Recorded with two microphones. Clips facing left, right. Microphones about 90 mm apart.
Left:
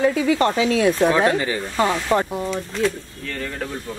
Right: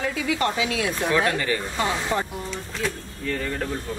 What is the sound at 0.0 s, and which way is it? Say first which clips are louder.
Speech: left 7 dB; 35° left (ahead or behind).